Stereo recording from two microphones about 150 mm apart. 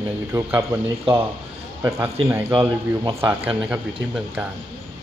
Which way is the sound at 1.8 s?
20° right (ahead or behind).